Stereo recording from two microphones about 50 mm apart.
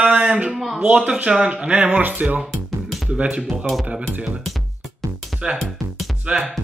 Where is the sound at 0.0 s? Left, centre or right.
Right.